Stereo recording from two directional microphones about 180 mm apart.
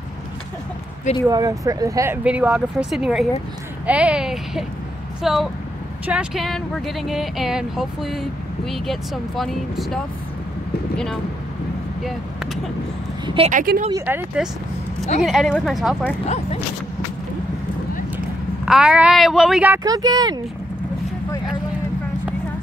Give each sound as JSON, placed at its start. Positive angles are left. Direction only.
{"t": 1.2, "sound": "speech", "side_deg": -20}
{"t": 2.2, "sound": "speech", "side_deg": -5}
{"t": 13.5, "sound": "speech", "side_deg": -45}
{"t": 14.0, "sound": "speech", "side_deg": -10}
{"t": 18.7, "sound": "speech", "side_deg": -5}
{"t": 19.8, "sound": "speech", "side_deg": -20}